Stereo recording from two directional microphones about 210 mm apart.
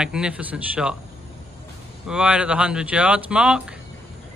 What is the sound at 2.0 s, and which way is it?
Speech, 5° right (ahead or behind).